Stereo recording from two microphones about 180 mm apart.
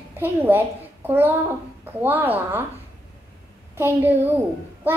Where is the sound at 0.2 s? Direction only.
10° right (ahead or behind).